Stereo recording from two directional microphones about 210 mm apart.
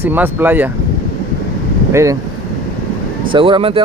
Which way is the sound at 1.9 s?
15° right (ahead or behind).